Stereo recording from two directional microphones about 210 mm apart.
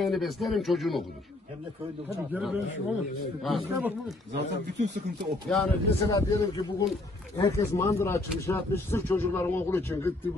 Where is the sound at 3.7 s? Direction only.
15° right (ahead or behind).